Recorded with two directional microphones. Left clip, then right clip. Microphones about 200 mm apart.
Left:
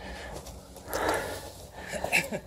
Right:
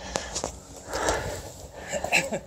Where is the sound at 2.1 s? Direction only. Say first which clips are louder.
Right 3 dB; 45° right (ahead or behind).